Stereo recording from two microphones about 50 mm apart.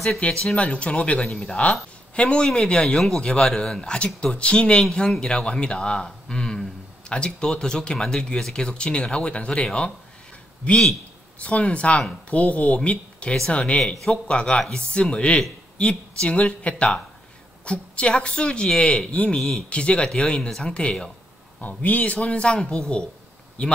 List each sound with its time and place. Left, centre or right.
0.2 s speech: centre
1.2 s a man's voice: centre
11.4 s speech: left
21.5 s speech: left